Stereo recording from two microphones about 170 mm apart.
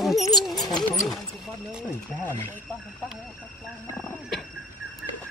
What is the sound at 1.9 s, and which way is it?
Speech, 15° left (ahead or behind).